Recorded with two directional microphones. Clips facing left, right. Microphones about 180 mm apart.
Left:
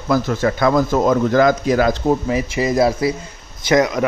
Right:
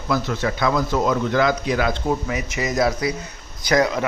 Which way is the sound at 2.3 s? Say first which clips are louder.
Left 6 dB; 30° left (ahead or behind).